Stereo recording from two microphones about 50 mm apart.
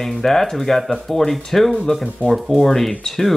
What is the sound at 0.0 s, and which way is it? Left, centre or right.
Speech, centre.